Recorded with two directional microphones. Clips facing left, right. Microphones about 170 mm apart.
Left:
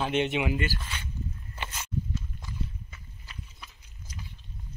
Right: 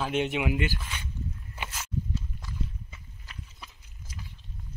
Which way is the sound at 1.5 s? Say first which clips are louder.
Even; 5° right (ahead or behind).